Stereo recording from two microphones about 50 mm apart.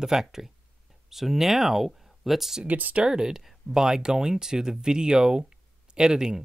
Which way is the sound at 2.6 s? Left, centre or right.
Right.